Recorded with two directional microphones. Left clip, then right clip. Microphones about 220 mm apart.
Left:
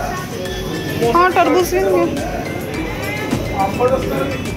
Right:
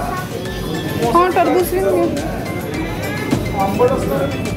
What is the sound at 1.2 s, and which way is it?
Speech, 5° right (ahead or behind).